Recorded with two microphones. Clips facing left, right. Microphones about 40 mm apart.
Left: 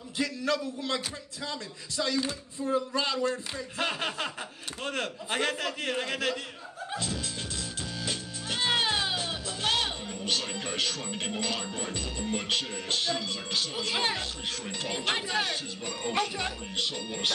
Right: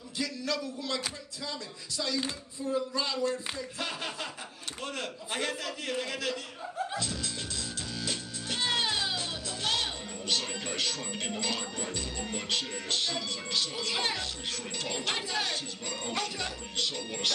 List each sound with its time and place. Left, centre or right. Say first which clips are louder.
0.2 s speech: left 4 dB; left
6.9 s music: left 1 dB; left
10.6 s speech: left 2 dB; left